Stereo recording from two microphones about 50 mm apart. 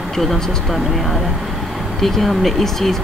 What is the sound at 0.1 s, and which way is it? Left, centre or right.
Speech, centre.